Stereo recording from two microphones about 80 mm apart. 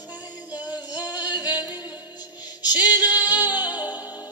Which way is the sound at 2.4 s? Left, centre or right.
Left.